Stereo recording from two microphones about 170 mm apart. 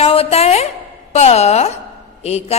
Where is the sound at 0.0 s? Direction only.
35° left (ahead or behind).